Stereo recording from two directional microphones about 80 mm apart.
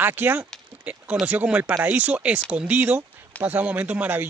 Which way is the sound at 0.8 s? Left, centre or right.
Centre.